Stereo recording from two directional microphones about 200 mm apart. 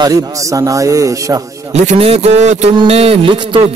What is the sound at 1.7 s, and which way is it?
A man's voice, 30° right (ahead or behind).